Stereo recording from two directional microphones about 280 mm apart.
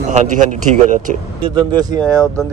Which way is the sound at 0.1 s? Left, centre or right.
Right.